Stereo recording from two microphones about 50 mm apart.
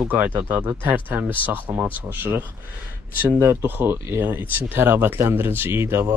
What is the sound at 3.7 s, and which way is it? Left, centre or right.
Speech, right.